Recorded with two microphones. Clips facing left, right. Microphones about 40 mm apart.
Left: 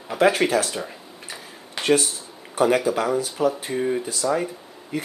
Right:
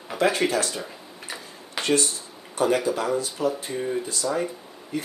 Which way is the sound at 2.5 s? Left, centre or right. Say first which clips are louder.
Left 3 dB; centre.